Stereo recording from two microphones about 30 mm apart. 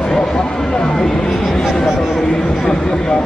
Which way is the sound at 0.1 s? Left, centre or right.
Left.